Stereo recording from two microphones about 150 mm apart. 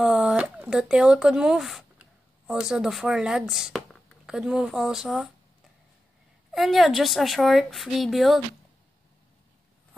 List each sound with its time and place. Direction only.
0.0 s speech: 5° right (ahead or behind)
6.5 s a woman's voice: centre (ahead or behind)